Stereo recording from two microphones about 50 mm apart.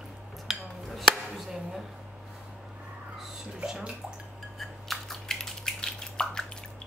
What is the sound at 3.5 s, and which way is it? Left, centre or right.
Bathtub, centre.